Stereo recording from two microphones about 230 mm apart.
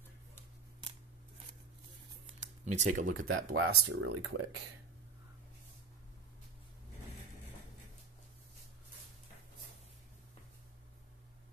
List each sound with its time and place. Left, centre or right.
2.6 s speech: right
3.2 s speech: right